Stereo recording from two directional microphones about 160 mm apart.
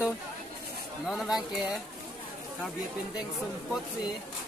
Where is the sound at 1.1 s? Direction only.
Centre (ahead or behind).